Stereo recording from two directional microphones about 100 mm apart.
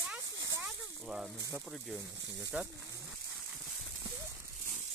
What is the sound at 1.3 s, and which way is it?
Speech, 35° right (ahead or behind).